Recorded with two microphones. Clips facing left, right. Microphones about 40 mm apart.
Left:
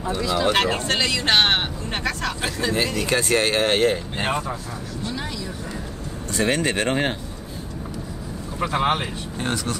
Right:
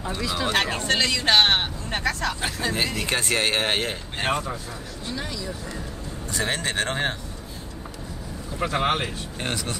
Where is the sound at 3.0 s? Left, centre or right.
Right.